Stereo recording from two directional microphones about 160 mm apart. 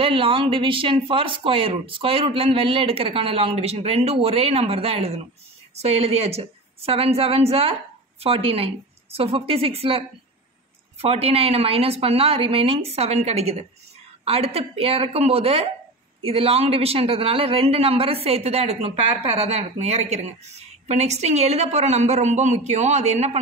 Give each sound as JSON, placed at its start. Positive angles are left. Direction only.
{"t": 0.0, "sound": "a man's voice", "side_deg": -35}